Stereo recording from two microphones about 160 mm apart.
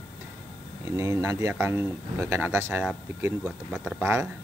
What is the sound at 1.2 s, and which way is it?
Speech, 20° right (ahead or behind).